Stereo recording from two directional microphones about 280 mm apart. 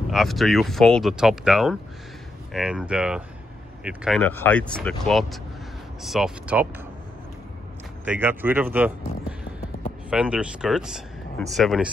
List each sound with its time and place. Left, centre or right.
0.1 s speech: centre
8.0 s speech: centre
10.0 s speech: centre